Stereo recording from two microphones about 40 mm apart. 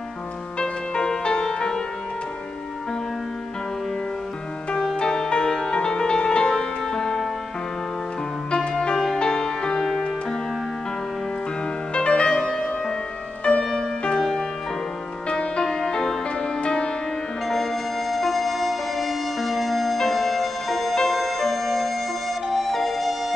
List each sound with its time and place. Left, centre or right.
0.6 s music: left
4.7 s music: centre
8.5 s music: left
11.9 s music: left
13.7 s music: centre
18.1 s music: centre